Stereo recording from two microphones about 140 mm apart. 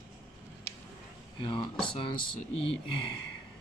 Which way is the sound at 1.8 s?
35° left (ahead or behind).